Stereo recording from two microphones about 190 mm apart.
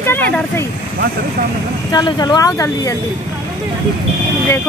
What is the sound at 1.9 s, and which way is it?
Speech, 20° left (ahead or behind).